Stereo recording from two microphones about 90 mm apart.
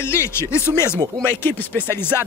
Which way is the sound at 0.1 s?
30° left (ahead or behind).